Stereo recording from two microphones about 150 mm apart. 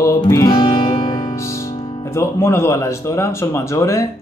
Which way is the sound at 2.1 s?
15° left (ahead or behind).